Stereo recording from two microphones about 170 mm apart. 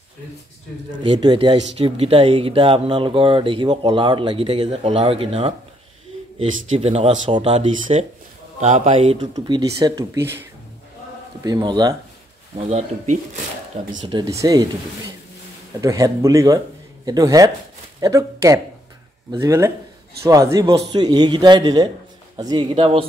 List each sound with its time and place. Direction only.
1.0 s speech: 30° right (ahead or behind)
6.8 s speech: 35° right (ahead or behind)
9.3 s speech: 20° right (ahead or behind)
11.4 s speech: 25° right (ahead or behind)
12.5 s speech: 40° right (ahead or behind)
14.0 s speech: 25° right (ahead or behind)
15.8 s speech: 20° right (ahead or behind)